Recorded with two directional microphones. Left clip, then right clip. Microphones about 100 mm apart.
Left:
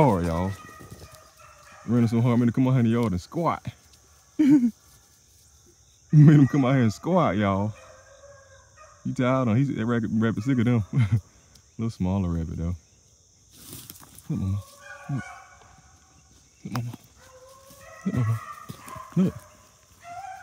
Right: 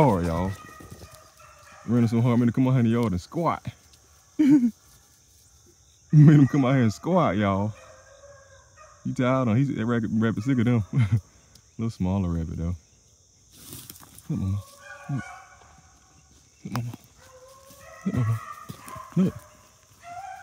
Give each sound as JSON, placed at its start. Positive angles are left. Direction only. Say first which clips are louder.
{"t": 0.1, "sound": "speech", "louder": "even", "side_deg": 5}
{"t": 1.7, "sound": "speech", "louder": "even", "side_deg": 20}
{"t": 6.0, "sound": "speech", "louder": "even", "side_deg": 20}
{"t": 9.0, "sound": "speech", "louder": "even", "side_deg": 10}
{"t": 14.3, "sound": "chicken", "louder": "even", "side_deg": 30}
{"t": 18.1, "sound": "a sound", "louder": "even", "side_deg": 55}
{"t": 19.2, "sound": "speech", "louder": "even", "side_deg": 85}